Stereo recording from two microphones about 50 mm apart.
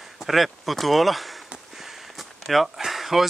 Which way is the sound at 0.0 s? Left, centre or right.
Centre.